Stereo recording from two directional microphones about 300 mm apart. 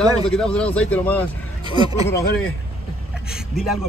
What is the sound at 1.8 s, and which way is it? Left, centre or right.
Speech, centre.